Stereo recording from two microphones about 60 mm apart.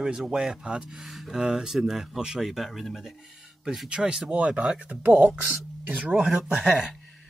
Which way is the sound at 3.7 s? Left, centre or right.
Centre.